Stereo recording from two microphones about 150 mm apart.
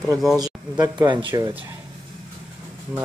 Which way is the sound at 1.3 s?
10° right (ahead or behind).